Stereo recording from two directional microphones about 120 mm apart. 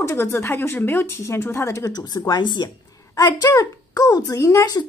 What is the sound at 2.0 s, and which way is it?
Speech, 35° left (ahead or behind).